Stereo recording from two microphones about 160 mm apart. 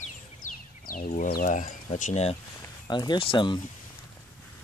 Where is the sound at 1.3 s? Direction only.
60° left (ahead or behind); by 2.4 s 40° left (ahead or behind).